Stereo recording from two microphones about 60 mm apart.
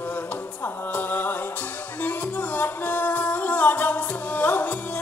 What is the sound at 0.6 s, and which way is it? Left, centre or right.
Music, left.